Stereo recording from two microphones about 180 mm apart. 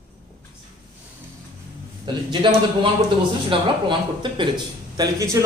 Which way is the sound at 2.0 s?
25° right (ahead or behind).